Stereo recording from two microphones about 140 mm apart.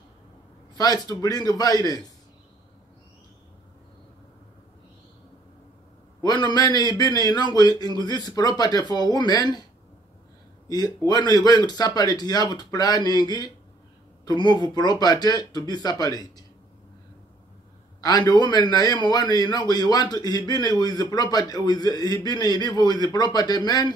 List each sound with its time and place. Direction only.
0.7 s a man's voice: 30° left (ahead or behind)
6.2 s a man's voice: 30° left (ahead or behind)
10.7 s a man's voice: 30° left (ahead or behind)
18.0 s a man's voice: 30° left (ahead or behind)